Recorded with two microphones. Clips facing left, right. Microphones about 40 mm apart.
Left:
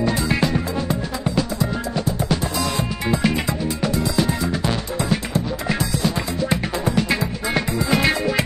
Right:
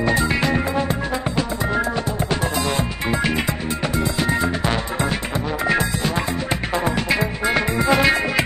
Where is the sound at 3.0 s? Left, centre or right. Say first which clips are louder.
Left 1 dB; right.